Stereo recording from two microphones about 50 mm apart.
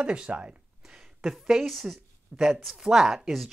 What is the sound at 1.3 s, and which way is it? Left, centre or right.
Speech, centre.